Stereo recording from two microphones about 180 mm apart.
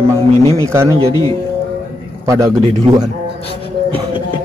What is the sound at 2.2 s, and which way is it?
Speech, 20° right (ahead or behind).